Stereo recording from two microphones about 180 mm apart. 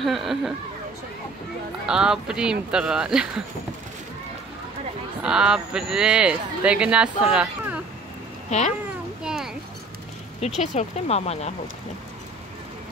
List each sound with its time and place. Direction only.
0.0 s speech: centre (ahead or behind)
1.9 s speech: 5° right (ahead or behind)
5.2 s speech: 5° right (ahead or behind)
8.5 s speech: 40° left (ahead or behind)
9.2 s a sound: centre (ahead or behind)
10.6 s speech: 40° left (ahead or behind)